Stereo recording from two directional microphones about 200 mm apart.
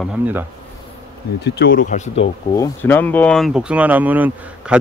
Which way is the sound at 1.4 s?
55° left (ahead or behind).